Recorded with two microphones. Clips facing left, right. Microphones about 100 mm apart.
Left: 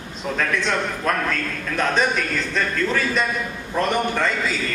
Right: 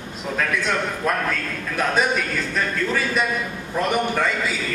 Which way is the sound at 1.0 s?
5° right (ahead or behind).